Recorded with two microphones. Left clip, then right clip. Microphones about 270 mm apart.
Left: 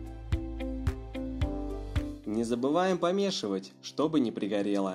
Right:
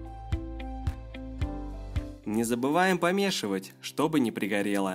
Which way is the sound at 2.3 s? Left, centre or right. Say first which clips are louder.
Right 2 dB; right.